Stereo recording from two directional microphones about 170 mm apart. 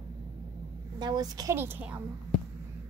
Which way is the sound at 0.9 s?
25° right (ahead or behind).